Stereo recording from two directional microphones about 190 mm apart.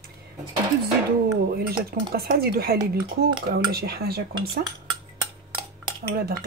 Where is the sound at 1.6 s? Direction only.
55° right (ahead or behind).